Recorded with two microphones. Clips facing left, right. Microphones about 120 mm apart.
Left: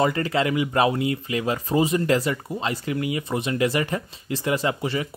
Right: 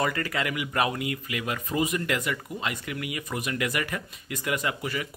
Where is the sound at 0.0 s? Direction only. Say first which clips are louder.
Left 6 dB; 25° left (ahead or behind).